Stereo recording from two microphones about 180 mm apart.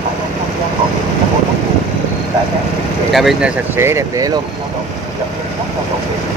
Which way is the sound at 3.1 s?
Centre (ahead or behind).